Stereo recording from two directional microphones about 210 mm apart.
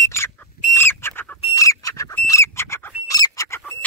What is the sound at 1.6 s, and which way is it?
Bird, 15° left (ahead or behind).